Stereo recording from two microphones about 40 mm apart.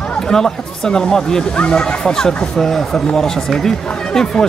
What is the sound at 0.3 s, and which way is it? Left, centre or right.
Speech, centre.